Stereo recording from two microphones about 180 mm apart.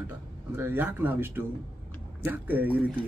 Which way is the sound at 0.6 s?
10° right (ahead or behind).